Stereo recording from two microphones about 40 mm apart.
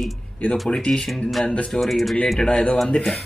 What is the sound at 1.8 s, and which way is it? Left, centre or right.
Speech, centre.